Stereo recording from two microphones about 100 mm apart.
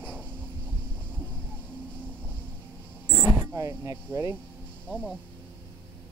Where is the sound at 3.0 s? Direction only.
20° right (ahead or behind).